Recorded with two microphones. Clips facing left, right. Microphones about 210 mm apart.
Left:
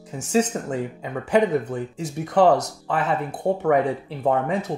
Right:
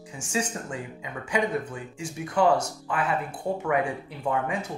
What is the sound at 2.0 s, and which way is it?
Speech, 60° left (ahead or behind).